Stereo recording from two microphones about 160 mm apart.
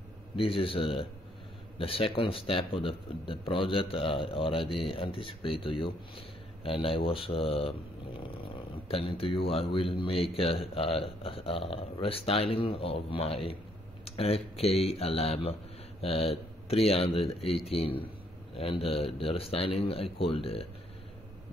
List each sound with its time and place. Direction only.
0.4 s speech: 35° left (ahead or behind)
8.8 s speech: 35° left (ahead or behind)